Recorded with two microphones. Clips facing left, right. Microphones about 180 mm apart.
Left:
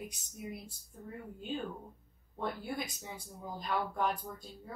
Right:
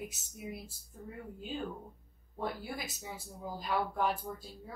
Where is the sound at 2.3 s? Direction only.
5° right (ahead or behind).